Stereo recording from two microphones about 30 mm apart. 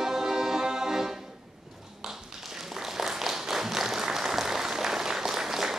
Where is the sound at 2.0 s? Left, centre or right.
Centre.